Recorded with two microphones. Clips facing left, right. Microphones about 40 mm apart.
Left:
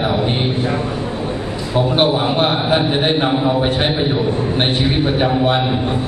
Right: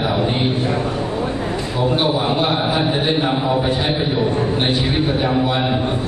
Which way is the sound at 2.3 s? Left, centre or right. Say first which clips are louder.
Left 2 dB; left.